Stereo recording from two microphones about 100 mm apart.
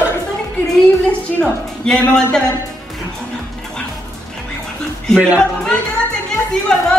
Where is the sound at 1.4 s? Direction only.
10° left (ahead or behind).